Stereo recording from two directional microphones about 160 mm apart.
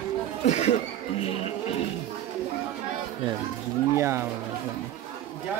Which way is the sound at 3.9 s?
15° right (ahead or behind).